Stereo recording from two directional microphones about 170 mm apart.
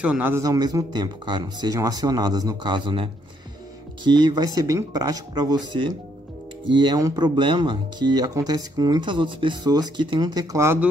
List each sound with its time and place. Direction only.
0.0 s speech: 10° right (ahead or behind)
6.7 s speech: 25° right (ahead or behind)